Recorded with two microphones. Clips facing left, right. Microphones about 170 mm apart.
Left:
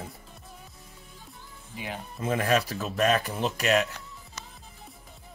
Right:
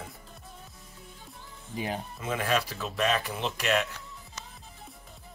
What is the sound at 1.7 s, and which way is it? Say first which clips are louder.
Speech: right 4 dB; 40° right (ahead or behind).